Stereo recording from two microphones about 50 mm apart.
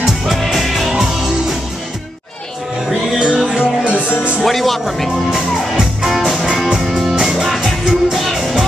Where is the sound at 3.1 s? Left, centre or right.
Centre.